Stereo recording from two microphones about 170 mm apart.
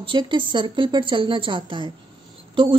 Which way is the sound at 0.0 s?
30° right (ahead or behind).